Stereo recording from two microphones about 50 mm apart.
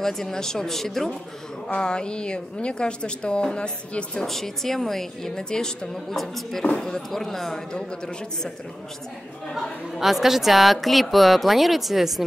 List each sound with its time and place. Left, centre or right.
0.0 s a woman's voice: centre
1.7 s a woman's voice: centre
4.3 s a woman's voice: centre
6.6 s a woman's voice: centre
9.9 s speech: centre